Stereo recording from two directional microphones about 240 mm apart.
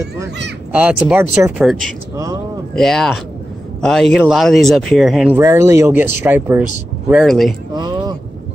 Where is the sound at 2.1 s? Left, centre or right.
Centre.